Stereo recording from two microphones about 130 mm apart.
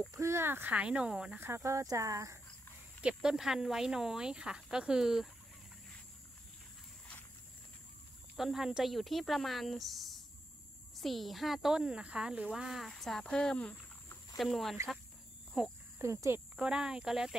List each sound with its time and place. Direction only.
0.1 s speech: 20° right (ahead or behind)
1.4 s speech: 20° right (ahead or behind)
3.0 s speech: 5° right (ahead or behind)
8.4 s speech: 5° right (ahead or behind)
16.0 s speech: 20° right (ahead or behind)
16.5 s speech: 5° right (ahead or behind)